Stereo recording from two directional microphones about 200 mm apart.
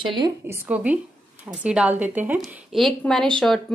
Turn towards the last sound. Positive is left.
turn(degrees=0)  # may be behind; listen again after turning